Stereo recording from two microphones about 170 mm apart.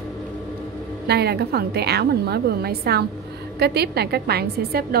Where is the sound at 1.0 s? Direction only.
70° right (ahead or behind).